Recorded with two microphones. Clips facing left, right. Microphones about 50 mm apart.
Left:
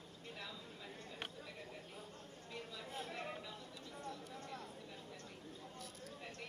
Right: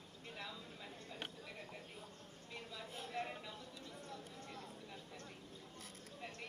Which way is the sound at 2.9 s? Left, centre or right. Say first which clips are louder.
Right 1 dB; left.